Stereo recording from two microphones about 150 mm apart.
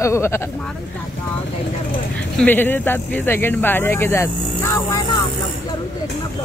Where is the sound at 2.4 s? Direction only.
10° left (ahead or behind).